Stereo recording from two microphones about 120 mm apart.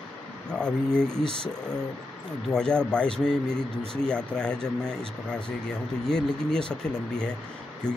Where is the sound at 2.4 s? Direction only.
5° left (ahead or behind).